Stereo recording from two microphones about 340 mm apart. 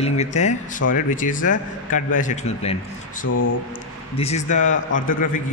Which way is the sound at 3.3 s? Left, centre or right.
Left.